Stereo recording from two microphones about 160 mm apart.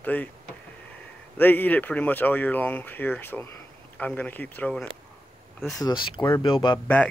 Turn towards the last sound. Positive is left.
turn(degrees=30)  # may be behind; listen again after turning